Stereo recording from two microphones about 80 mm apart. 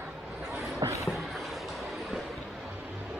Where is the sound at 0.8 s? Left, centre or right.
Right.